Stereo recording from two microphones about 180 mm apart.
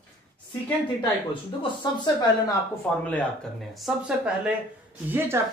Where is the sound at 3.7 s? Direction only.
5° right (ahead or behind).